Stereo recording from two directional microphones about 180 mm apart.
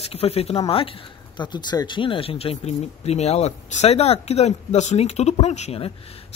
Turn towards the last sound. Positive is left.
turn(degrees=35)  # may be behind; listen again after turning